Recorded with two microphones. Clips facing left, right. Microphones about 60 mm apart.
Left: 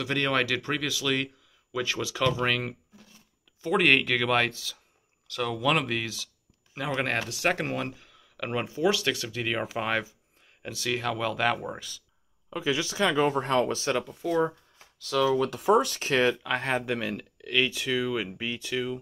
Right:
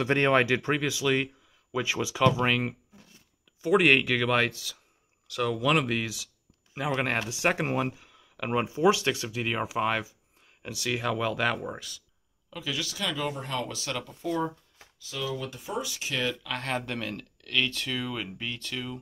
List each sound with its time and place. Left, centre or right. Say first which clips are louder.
0.0 s speech: right 4 dB; right; by 12.0 s centre
12.4 s a man's voice: left 6 dB; left
13.4 s speech: left 8 dB; left
13.7 s a man's voice: left 6 dB; left
14.0 s speech: left 2 dB; centre
15.0 s speech: left 10 dB; left
16.4 s speech: left 4 dB; centre